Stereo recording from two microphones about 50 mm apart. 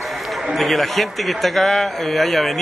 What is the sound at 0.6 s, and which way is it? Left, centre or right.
A man's voice, centre.